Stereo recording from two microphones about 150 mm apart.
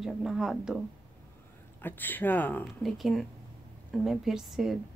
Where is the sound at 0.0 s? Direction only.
Centre (ahead or behind).